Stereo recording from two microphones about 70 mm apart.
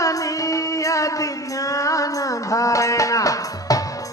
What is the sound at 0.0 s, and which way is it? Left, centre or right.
Music, left.